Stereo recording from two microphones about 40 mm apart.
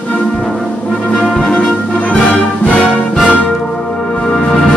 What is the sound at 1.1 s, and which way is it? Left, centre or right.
Music, centre.